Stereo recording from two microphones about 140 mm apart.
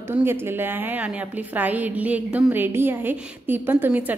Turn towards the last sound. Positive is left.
turn(degrees=-10)  # may be behind; listen again after turning